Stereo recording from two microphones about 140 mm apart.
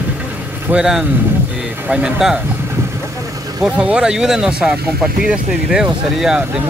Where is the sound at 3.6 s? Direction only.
5° right (ahead or behind).